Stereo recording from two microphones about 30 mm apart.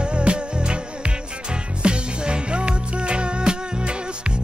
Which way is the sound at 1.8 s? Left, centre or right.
Right.